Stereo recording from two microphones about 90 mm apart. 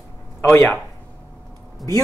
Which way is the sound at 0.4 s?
30° left (ahead or behind).